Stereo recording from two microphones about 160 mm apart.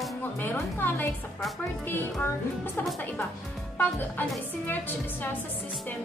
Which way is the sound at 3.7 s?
10° left (ahead or behind).